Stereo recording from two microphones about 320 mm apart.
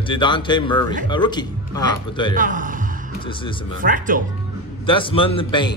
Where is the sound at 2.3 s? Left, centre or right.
Right.